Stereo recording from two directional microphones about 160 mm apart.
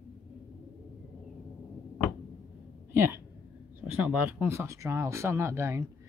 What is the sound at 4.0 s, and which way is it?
Speech, 10° right (ahead or behind).